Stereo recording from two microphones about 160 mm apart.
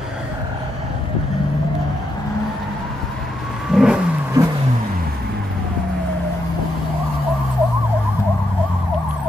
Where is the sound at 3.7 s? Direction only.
5° right (ahead or behind).